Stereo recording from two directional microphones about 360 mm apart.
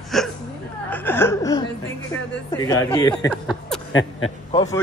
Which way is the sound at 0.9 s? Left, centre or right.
Centre.